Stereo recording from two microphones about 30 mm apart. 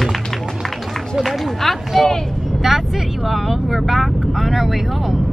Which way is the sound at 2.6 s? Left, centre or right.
Centre.